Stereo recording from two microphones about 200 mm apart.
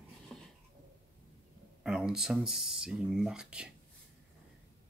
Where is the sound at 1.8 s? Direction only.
5° right (ahead or behind).